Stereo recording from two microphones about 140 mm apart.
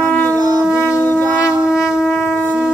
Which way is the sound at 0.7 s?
20° left (ahead or behind).